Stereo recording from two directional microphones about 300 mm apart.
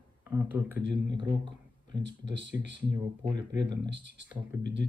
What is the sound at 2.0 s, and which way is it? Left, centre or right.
Speech, right.